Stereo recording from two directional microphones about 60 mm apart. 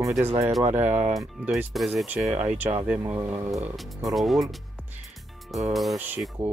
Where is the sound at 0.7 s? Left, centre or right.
Right.